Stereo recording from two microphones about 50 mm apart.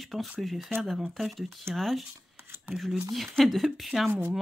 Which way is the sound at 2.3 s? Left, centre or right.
Right.